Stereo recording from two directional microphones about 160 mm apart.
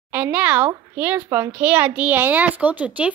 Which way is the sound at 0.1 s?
10° right (ahead or behind).